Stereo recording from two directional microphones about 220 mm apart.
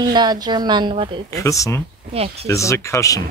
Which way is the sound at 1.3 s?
15° left (ahead or behind).